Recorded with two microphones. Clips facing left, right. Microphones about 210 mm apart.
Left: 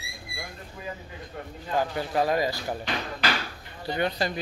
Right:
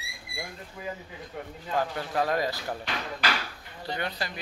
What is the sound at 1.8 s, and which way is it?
Speech, 5° left (ahead or behind).